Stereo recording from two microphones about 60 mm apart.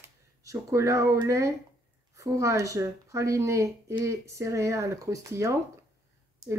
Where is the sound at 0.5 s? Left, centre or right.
Right.